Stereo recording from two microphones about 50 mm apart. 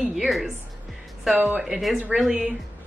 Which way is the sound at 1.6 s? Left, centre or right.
Centre.